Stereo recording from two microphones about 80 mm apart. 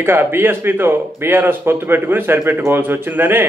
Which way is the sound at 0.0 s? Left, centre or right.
Right.